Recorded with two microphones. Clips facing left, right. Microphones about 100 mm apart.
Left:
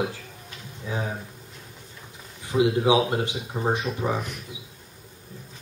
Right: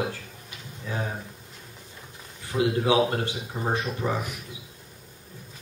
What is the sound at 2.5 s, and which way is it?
Speech, 15° left (ahead or behind).